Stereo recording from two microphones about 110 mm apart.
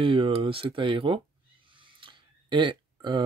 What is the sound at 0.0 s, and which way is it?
Speech, 55° right (ahead or behind).